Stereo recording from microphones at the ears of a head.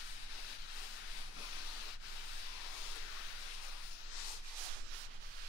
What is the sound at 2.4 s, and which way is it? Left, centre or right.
Hiss, left.